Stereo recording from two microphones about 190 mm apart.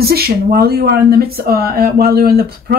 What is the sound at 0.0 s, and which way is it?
Speech, 55° right (ahead or behind).